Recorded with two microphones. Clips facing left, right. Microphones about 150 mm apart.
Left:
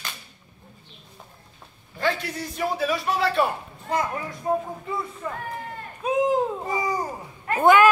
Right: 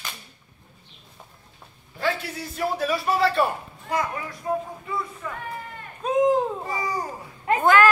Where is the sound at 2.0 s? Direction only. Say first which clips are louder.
Left 1 dB; 5° right (ahead or behind).